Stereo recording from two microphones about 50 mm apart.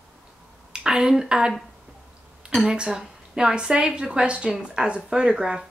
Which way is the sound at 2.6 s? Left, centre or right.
Centre.